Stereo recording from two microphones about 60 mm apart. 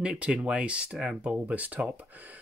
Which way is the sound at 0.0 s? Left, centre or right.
Centre.